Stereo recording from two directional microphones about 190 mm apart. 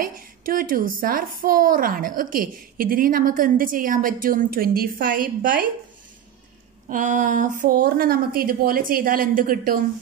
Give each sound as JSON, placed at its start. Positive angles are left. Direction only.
{"t": 0.0, "sound": "a woman's voice", "side_deg": -50}
{"t": 6.9, "sound": "a woman's voice", "side_deg": -40}